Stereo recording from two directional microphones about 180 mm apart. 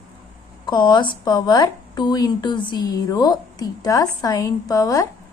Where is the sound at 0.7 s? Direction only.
25° left (ahead or behind).